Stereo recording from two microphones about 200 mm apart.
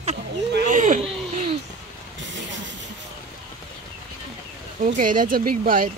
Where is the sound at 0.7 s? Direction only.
40° right (ahead or behind).